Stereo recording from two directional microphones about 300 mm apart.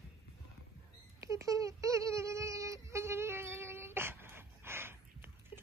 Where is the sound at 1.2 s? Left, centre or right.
Centre.